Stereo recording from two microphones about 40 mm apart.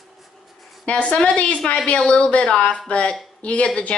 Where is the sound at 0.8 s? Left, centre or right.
Left.